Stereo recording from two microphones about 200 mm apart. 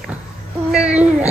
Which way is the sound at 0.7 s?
5° right (ahead or behind).